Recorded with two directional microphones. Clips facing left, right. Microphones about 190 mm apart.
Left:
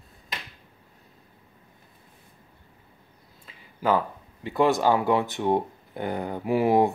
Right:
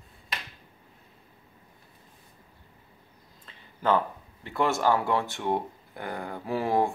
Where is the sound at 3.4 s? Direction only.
10° left (ahead or behind).